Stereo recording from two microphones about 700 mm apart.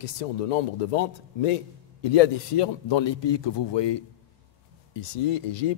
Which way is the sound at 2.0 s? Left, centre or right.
Left.